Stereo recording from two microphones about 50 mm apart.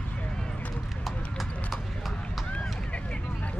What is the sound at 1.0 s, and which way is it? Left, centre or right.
Clip-clop, centre.